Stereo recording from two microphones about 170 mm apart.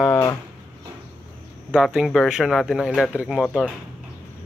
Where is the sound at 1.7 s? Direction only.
5° right (ahead or behind).